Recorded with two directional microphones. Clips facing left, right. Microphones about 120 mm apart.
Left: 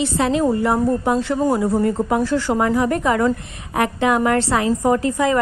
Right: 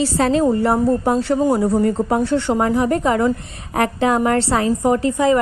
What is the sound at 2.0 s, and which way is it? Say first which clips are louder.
A woman's voice: right 1 dB; 30° right (ahead or behind).